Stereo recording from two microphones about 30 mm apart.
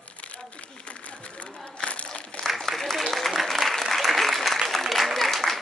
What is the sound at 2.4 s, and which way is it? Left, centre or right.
Applause, centre.